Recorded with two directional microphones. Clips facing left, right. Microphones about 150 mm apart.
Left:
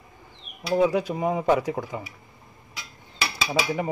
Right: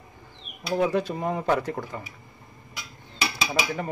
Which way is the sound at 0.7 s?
5° left (ahead or behind).